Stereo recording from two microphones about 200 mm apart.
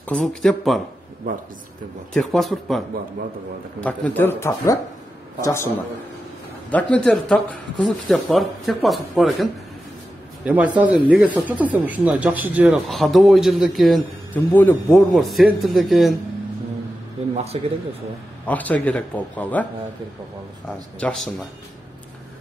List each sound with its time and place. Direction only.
0.0 s speech: 5° left (ahead or behind)
2.1 s speech: centre (ahead or behind)
3.8 s speech: 5° left (ahead or behind)
6.7 s a man's voice: 5° left (ahead or behind)
17.5 s speech: 30° right (ahead or behind)
18.4 s speech: 10° left (ahead or behind)
21.0 s speech: centre (ahead or behind)